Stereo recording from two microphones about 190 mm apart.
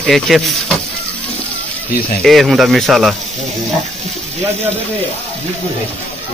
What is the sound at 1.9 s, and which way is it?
Speech, 55° left (ahead or behind).